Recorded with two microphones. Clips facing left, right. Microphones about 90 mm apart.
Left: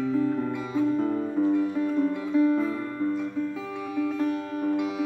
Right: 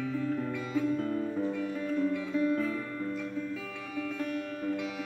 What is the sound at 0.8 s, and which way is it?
Music, 25° left (ahead or behind).